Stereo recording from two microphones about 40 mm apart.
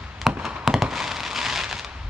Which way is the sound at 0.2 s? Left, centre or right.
Centre.